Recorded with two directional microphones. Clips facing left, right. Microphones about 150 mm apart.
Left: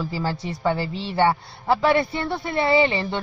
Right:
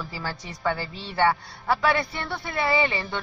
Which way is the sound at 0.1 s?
30° left (ahead or behind).